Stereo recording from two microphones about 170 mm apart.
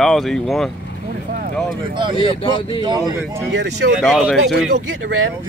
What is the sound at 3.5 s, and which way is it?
Speech, 90° right.